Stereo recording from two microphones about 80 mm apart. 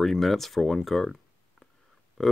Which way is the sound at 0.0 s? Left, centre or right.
Centre.